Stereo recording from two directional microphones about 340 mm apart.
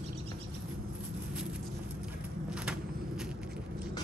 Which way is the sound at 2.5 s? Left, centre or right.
Centre.